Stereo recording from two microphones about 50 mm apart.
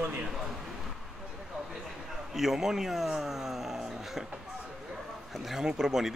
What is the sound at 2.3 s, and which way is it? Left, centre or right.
Speech, centre.